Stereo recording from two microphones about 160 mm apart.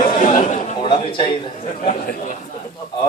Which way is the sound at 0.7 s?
30° left (ahead or behind).